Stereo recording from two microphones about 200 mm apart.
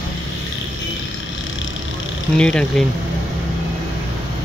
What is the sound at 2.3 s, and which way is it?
Speech, 5° left (ahead or behind).